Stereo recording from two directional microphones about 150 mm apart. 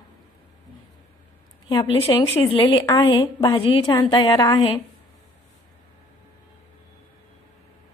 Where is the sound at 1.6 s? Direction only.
35° left (ahead or behind).